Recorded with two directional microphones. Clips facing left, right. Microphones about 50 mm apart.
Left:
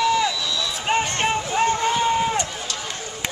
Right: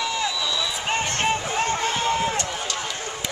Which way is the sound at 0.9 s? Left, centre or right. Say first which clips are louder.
Left 3 dB; centre.